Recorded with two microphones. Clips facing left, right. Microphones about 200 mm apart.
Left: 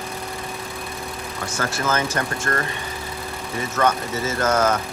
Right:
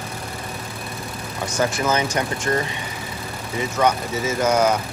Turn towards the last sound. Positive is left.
turn(degrees=-10)  # may be behind; listen again after turning